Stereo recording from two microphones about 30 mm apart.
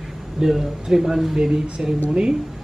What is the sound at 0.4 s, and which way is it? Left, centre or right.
Speech, centre.